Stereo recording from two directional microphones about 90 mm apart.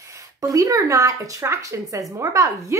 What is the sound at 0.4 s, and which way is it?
Speech, 40° right (ahead or behind).